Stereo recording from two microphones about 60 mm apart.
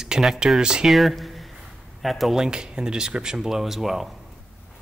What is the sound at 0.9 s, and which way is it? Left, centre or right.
A man's voice, centre.